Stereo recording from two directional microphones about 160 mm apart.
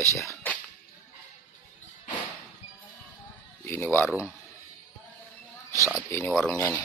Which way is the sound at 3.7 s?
15° left (ahead or behind).